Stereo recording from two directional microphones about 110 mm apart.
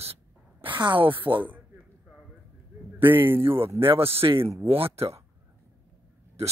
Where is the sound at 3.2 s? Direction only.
20° right (ahead or behind).